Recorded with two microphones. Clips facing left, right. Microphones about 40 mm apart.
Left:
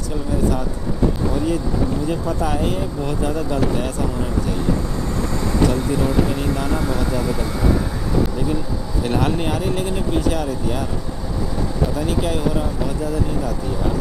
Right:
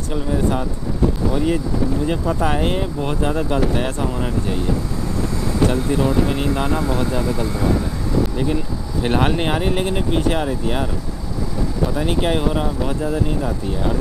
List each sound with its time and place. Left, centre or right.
0.1 s vehicle: right
1.3 s speech: right
6.2 s speech: right
7.2 s speech: centre
9.0 s speech: right
11.9 s speech: right